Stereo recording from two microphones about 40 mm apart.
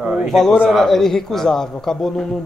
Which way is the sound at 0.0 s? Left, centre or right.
Right.